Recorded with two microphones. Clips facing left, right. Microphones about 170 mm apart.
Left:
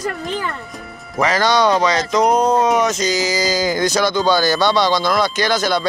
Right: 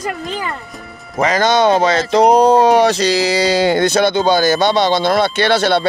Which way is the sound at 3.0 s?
70° right (ahead or behind).